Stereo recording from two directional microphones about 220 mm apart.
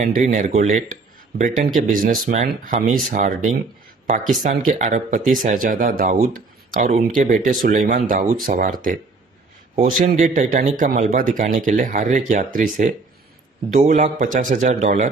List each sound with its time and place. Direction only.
0.0 s a man's voice: 35° right (ahead or behind)